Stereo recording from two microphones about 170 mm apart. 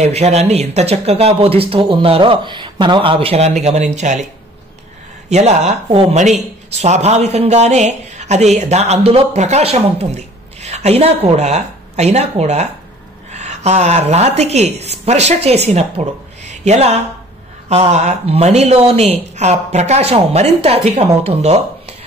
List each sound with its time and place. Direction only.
0.0 s speech: 40° right (ahead or behind)
5.3 s speech: 40° right (ahead or behind)